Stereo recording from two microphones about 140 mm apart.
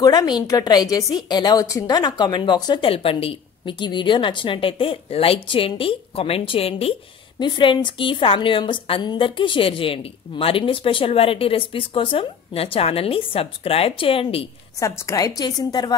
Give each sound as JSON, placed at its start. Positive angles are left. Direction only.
{"t": 0.0, "sound": "a woman's voice", "side_deg": 30}
{"t": 14.8, "sound": "a woman's voice", "side_deg": 20}